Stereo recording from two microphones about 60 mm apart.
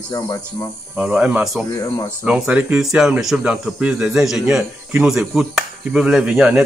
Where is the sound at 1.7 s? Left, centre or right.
Left.